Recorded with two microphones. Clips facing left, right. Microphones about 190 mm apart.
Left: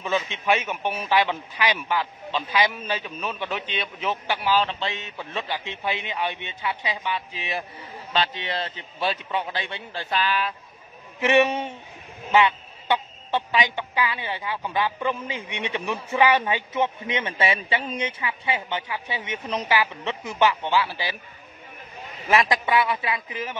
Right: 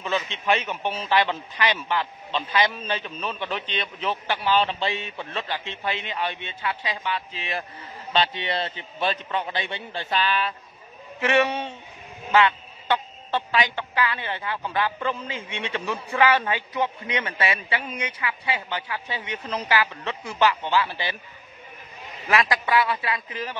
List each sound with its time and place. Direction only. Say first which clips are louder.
0.0 s a woman's voice: left 1 dB; 10° left (ahead or behind)
8.1 s a man's voice: right 2 dB; centre (ahead or behind)
11.1 s a woman's voice: left 2 dB; 15° left (ahead or behind)
22.3 s a man's voice: left 1 dB; 20° left (ahead or behind)